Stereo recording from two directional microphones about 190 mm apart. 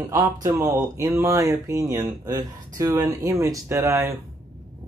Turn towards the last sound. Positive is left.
turn(degrees=-15)  # may be behind; listen again after turning